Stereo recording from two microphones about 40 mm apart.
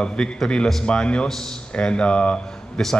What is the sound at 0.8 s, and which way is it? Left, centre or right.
A man's voice, left.